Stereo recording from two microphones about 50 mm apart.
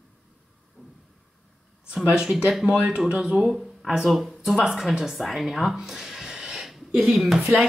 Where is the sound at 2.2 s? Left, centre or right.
Centre.